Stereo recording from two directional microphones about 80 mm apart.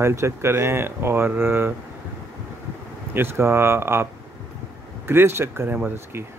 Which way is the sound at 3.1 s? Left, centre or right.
Right.